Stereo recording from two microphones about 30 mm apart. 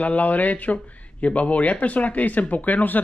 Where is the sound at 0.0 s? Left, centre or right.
Left.